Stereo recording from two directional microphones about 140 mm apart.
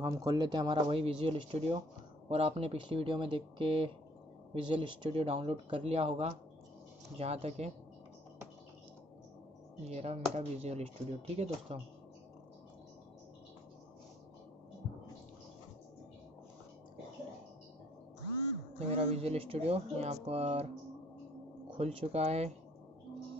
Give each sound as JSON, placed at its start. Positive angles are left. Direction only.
{"t": 0.0, "sound": "speech", "side_deg": -25}
{"t": 0.8, "sound": "speech", "side_deg": -45}
{"t": 9.8, "sound": "speech", "side_deg": -50}
{"t": 18.8, "sound": "speech", "side_deg": -50}
{"t": 21.7, "sound": "speech", "side_deg": -50}